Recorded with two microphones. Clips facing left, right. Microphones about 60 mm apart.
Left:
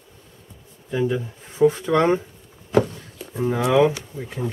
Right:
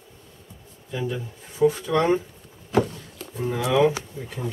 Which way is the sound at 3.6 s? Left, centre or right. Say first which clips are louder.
Left 3 dB; left.